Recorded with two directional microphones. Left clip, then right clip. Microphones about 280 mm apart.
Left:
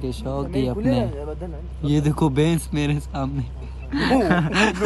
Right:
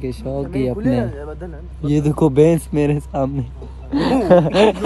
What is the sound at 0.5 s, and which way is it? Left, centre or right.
A man's voice, left.